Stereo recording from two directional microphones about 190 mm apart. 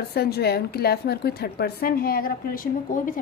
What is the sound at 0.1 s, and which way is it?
A woman's voice, 55° left (ahead or behind).